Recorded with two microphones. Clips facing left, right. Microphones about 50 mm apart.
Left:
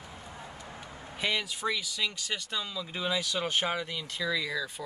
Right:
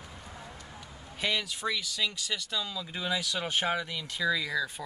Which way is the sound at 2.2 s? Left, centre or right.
Left.